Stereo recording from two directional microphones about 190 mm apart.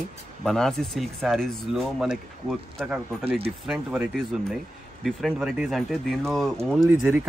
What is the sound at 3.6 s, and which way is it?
Speech, 10° right (ahead or behind).